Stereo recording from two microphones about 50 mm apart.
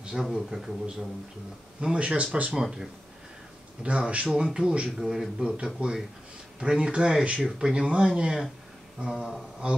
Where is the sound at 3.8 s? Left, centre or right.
Right.